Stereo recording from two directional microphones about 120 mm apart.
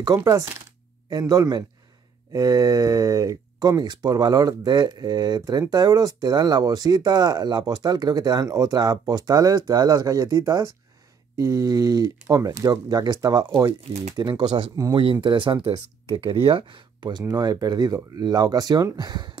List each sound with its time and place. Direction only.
0.0 s speech: 25° right (ahead or behind)